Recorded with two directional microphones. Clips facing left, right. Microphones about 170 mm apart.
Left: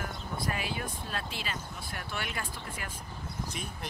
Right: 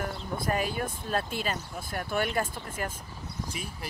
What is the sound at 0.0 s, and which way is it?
Speech, 45° right (ahead or behind).